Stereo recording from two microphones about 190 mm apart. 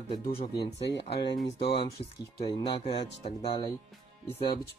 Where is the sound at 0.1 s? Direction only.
30° left (ahead or behind).